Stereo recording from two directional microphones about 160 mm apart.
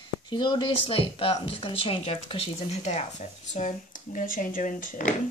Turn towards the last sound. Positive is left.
turn(degrees=55)  # may be behind; listen again after turning